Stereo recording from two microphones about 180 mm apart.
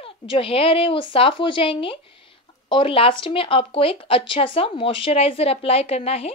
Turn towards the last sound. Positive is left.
turn(degrees=35)  # may be behind; listen again after turning